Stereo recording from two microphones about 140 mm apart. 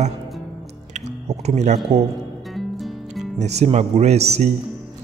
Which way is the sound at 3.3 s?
55° right (ahead or behind).